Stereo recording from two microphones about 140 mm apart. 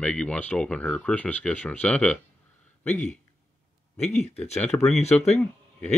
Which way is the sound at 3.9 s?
50° left (ahead or behind).